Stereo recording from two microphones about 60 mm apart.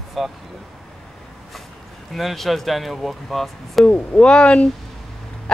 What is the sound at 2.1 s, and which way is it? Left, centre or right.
Speech, centre.